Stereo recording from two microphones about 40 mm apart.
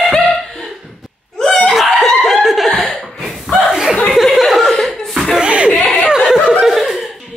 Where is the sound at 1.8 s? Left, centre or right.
Centre.